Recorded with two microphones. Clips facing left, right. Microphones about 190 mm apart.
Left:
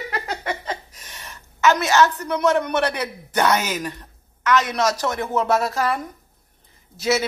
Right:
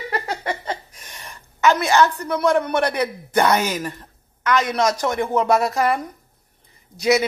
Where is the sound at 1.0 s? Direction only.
15° right (ahead or behind).